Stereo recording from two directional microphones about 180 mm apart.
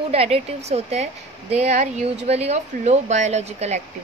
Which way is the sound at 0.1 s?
35° right (ahead or behind).